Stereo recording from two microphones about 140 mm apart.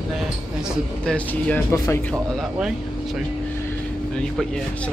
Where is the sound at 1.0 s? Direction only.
10° left (ahead or behind).